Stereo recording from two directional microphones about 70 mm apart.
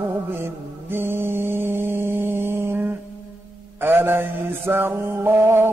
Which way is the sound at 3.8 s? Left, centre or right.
Right.